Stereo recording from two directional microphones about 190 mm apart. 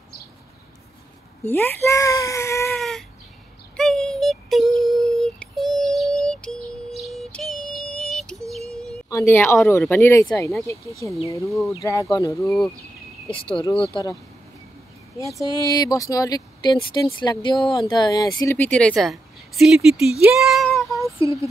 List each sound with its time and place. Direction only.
1.4 s speech: 10° left (ahead or behind)
2.7 s a sound: centre (ahead or behind)
3.7 s synthetic singing: 5° left (ahead or behind)
6.2 s music: 5° left (ahead or behind)
9.1 s speech: 10° left (ahead or behind)
12.1 s speech: 15° left (ahead or behind)
13.3 s speech: 25° left (ahead or behind)
15.4 s speech: 20° left (ahead or behind)
18.7 s speech: 5° left (ahead or behind)
21.0 s speech: 15° right (ahead or behind)